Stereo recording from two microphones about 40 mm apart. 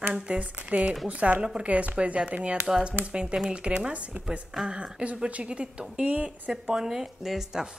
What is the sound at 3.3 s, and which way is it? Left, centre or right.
A woman's voice, centre.